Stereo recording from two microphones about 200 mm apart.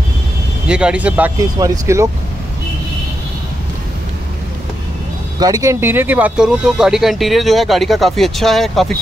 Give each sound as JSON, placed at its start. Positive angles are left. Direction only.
{"t": 0.7, "sound": "speech", "side_deg": -5}
{"t": 5.4, "sound": "speech", "side_deg": -15}